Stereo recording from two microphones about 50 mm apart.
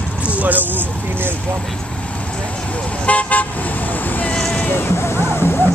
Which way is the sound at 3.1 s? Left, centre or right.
Left.